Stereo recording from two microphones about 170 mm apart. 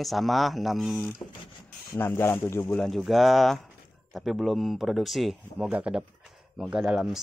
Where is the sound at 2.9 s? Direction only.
Centre (ahead or behind).